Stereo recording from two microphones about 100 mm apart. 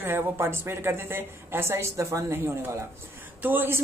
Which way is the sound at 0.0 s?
25° right (ahead or behind).